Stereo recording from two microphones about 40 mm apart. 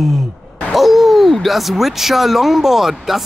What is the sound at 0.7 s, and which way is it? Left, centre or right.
Speech, centre.